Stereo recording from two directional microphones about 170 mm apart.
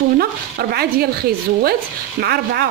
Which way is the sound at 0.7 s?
65° right (ahead or behind).